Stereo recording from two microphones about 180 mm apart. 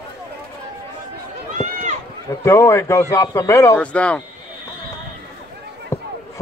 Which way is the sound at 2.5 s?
15° left (ahead or behind).